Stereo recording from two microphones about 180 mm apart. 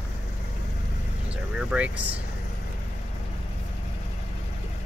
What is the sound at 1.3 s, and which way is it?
Vehicle, 5° right (ahead or behind).